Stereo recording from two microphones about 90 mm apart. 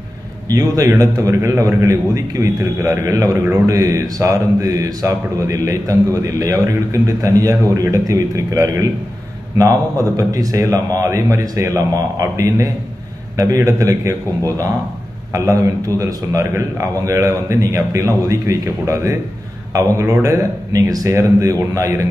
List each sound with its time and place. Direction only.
0.5 s a man's voice: 40° right (ahead or behind)